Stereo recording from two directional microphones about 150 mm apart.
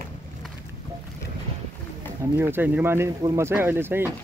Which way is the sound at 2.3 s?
15° right (ahead or behind).